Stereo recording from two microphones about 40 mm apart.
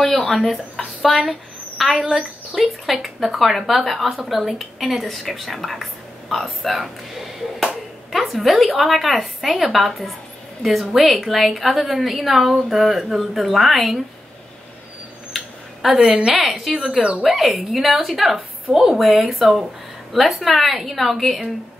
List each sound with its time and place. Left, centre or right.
0.2 s a woman's voice: centre
15.3 s a sound: centre
16.1 s a woman's voice: right
16.3 s a woman's voice: centre
16.7 s speech: centre
17.2 s a woman's voice: centre